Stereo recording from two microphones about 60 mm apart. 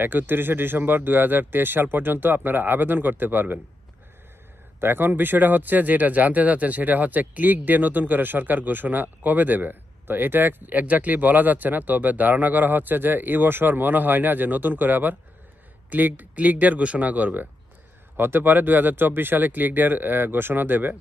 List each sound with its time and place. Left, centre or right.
0.0 s speech: right
4.7 s speech: right